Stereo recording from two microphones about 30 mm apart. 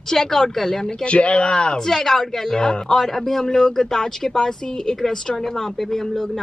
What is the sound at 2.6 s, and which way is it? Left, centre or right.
Speech, left.